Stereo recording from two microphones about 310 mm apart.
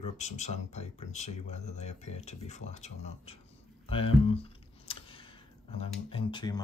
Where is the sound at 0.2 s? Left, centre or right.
Left.